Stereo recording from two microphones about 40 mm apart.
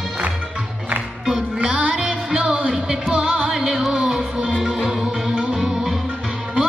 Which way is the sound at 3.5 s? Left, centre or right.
Centre.